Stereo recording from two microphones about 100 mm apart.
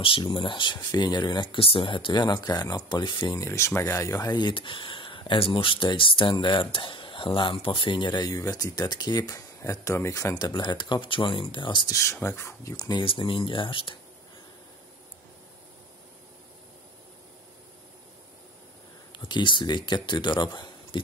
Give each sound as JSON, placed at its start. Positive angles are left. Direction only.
{"t": 0.0, "sound": "speech", "side_deg": 60}
{"t": 0.7, "sound": "speech", "side_deg": 45}
{"t": 1.6, "sound": "speech", "side_deg": 60}
{"t": 3.3, "sound": "speech", "side_deg": 25}
{"t": 10.4, "sound": "speech", "side_deg": 45}
{"t": 11.9, "sound": "speech", "side_deg": 30}
{"t": 12.7, "sound": "speech", "side_deg": 40}
{"t": 13.0, "sound": "speech", "side_deg": 60}
{"t": 19.1, "sound": "speech", "side_deg": 50}